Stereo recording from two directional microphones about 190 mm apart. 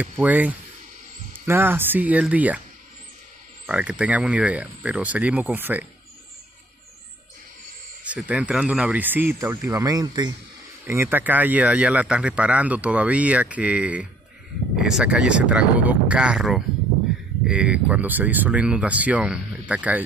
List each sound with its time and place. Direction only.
0.0 s speech: 10° right (ahead or behind)
3.6 s speech: 5° right (ahead or behind)
8.0 s speech: 5° right (ahead or behind)